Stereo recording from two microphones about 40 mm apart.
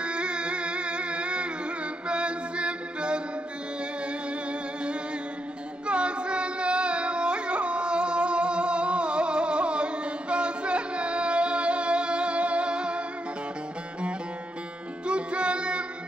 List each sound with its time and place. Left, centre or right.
0.0 s music: right
5.9 s carnatic music: right
10.3 s music: right
15.0 s music: right